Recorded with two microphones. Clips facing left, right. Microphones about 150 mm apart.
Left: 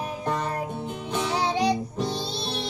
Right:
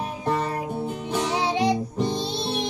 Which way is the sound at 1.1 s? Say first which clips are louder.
Right 1 dB; 20° right (ahead or behind).